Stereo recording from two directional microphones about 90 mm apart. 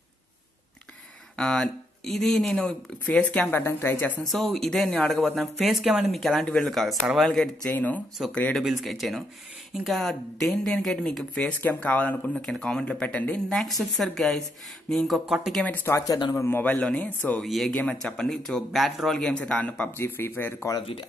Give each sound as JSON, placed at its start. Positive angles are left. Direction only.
{"t": 1.3, "sound": "speech", "side_deg": 5}
{"t": 4.2, "sound": "speech", "side_deg": 5}
{"t": 7.7, "sound": "speech", "side_deg": 20}
{"t": 8.5, "sound": "speech", "side_deg": 0}
{"t": 12.4, "sound": "speech", "side_deg": 5}
{"t": 13.7, "sound": "speech", "side_deg": 5}
{"t": 15.6, "sound": "speech", "side_deg": 20}
{"t": 15.9, "sound": "speech", "side_deg": 40}
{"t": 16.3, "sound": "speech", "side_deg": 25}
{"t": 17.4, "sound": "speech", "side_deg": 5}
{"t": 19.1, "sound": "speech", "side_deg": 10}
{"t": 20.0, "sound": "speech", "side_deg": 25}